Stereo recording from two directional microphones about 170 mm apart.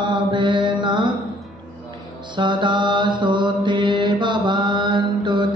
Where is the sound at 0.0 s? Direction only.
30° right (ahead or behind).